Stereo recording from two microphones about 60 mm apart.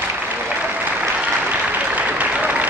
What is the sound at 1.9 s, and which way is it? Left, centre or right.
Applause, right.